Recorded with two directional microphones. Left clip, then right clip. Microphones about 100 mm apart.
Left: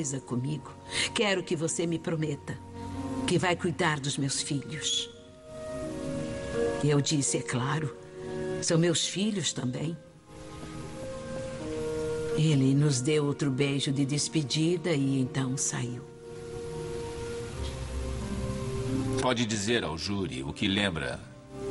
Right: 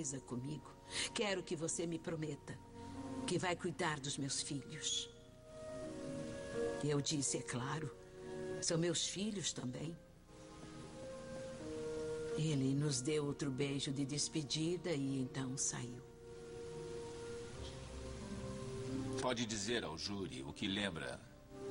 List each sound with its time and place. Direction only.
0.0 s speech: 40° left (ahead or behind)
5.9 s speech: 30° left (ahead or behind)
12.0 s speech: 35° left (ahead or behind)
18.9 s speech: 35° left (ahead or behind)